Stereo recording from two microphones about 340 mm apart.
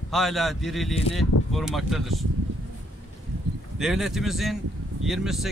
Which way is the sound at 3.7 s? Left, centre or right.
Centre.